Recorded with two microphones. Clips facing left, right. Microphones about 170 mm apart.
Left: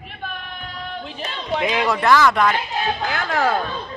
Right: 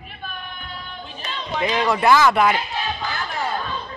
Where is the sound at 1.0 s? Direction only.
90° left.